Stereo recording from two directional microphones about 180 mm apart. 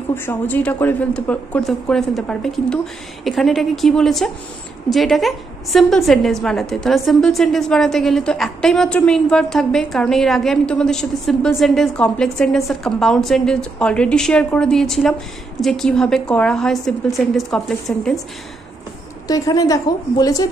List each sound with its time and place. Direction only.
0.1 s a woman's voice: 10° left (ahead or behind)
19.2 s a woman's voice: 20° left (ahead or behind)